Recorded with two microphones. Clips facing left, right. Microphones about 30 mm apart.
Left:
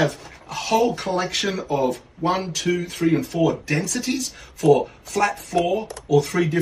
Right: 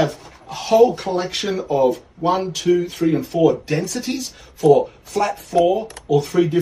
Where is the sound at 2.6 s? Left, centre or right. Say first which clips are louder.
Right 5 dB; left.